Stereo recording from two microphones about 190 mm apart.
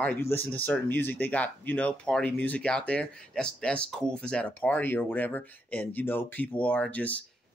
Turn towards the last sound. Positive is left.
turn(degrees=10)  # may be behind; listen again after turning